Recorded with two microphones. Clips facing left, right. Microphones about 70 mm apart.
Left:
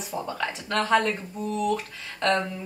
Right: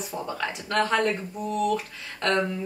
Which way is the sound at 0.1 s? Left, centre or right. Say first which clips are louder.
Left 2 dB; centre.